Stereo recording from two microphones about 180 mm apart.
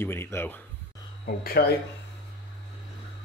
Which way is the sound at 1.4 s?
60° left (ahead or behind).